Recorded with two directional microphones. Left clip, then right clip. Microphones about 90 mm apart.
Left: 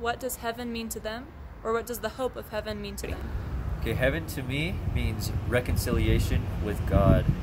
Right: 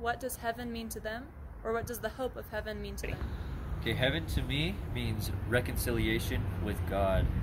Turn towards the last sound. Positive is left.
turn(degrees=25)  # may be behind; listen again after turning